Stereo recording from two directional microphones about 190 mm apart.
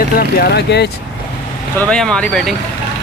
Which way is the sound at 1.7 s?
5° left (ahead or behind).